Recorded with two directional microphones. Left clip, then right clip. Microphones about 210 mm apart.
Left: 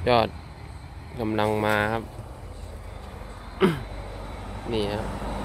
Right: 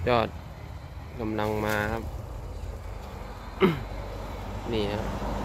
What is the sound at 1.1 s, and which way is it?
Speech, 30° left (ahead or behind).